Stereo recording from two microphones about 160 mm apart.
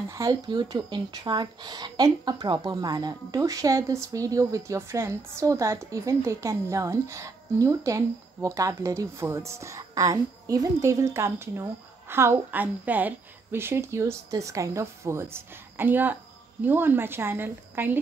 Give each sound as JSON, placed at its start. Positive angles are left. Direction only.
{"t": 0.1, "sound": "speech", "side_deg": -20}